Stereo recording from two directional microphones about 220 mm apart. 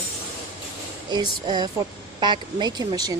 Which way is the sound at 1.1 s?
20° right (ahead or behind).